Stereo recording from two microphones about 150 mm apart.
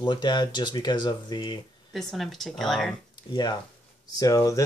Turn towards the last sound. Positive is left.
turn(degrees=20)  # may be behind; listen again after turning